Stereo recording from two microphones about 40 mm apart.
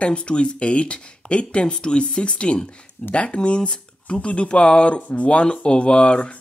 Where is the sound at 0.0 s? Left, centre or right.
Left.